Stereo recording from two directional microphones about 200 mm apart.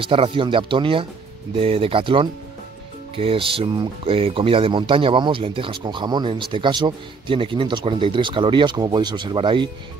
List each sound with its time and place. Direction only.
0.0 s speech: 30° right (ahead or behind)